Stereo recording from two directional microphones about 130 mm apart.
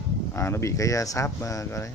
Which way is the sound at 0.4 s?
20° left (ahead or behind).